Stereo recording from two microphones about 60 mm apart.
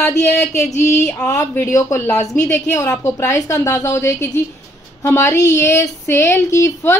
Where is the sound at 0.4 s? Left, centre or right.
Left.